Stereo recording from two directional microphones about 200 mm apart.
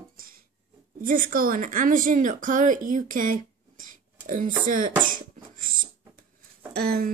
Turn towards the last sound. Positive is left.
turn(degrees=-50)  # may be behind; listen again after turning